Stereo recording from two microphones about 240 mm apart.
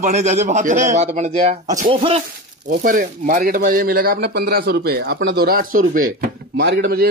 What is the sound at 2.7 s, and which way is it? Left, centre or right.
Speech, right.